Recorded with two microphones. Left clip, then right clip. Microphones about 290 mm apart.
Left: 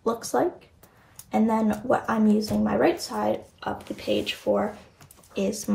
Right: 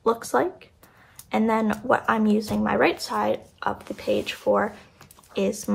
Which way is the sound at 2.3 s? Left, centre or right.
Centre.